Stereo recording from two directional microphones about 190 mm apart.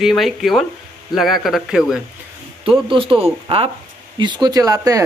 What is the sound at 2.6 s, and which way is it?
Speech, 25° right (ahead or behind).